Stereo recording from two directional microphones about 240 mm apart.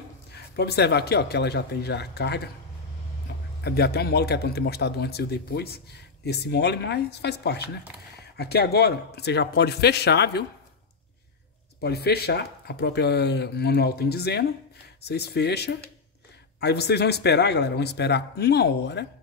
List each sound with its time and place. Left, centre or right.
0.3 s speech: left
3.3 s a sound: left
3.6 s speech: left
11.8 s speech: left